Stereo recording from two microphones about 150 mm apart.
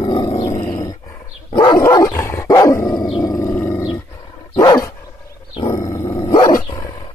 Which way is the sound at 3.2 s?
20° left (ahead or behind).